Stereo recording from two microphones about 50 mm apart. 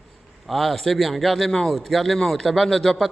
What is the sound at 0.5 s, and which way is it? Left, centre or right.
A man's voice, centre.